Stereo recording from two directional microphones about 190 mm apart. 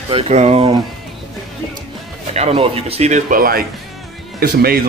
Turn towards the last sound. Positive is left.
turn(degrees=-55)  # may be behind; listen again after turning